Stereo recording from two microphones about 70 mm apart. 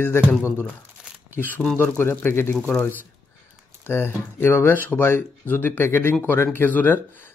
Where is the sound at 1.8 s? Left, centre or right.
Left.